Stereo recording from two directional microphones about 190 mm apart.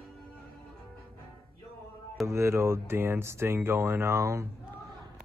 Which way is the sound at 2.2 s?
15° right (ahead or behind).